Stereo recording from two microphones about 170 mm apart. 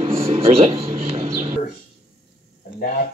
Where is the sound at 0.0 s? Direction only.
35° right (ahead or behind).